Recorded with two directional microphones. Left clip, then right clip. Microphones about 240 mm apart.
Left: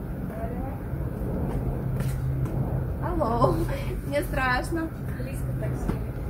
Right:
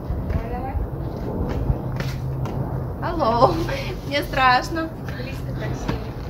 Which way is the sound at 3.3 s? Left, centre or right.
Right.